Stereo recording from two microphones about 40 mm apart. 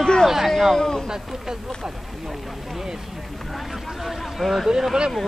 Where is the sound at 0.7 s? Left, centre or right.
Centre.